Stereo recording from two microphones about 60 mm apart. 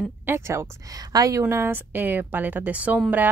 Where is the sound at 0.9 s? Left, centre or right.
Right.